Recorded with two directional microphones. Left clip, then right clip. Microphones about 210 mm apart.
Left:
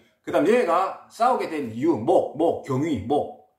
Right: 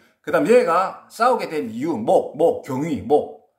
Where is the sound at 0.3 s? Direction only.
50° right (ahead or behind).